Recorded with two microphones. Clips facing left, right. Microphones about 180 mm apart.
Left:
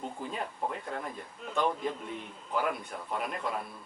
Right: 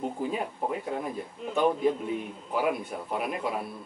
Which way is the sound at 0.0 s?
5° right (ahead or behind).